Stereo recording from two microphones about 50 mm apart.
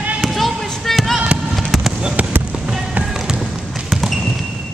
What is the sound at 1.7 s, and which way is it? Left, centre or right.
Fireworks, centre.